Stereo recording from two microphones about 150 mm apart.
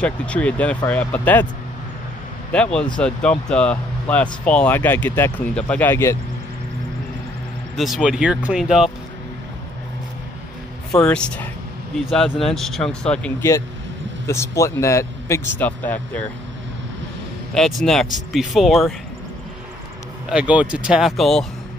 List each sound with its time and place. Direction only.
0.0 s speech: 10° left (ahead or behind)
2.5 s speech: 5° left (ahead or behind)
7.7 s speech: centre (ahead or behind)
10.9 s speech: 5° left (ahead or behind)
12.4 s speech: centre (ahead or behind)
14.2 s a man's voice: 20° left (ahead or behind)
17.6 s speech: centre (ahead or behind)
20.2 s speech: 10° right (ahead or behind)